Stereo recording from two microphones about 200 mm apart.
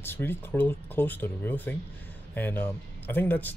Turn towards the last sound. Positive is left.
turn(degrees=10)  # may be behind; listen again after turning